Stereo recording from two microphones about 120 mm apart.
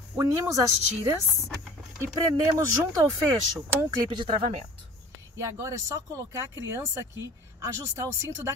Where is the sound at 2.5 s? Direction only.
25° right (ahead or behind).